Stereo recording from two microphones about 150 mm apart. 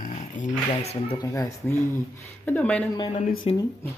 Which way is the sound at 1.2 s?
20° left (ahead or behind).